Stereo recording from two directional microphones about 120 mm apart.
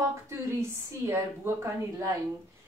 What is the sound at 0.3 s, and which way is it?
A woman's voice, 20° right (ahead or behind).